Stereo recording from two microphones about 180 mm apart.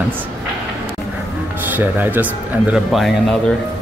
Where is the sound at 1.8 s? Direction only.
10° right (ahead or behind).